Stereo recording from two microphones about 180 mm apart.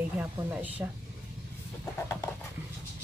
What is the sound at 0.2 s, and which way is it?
Speech, 10° right (ahead or behind).